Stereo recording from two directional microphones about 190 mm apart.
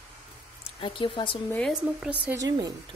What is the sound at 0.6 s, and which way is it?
Speech, 25° left (ahead or behind).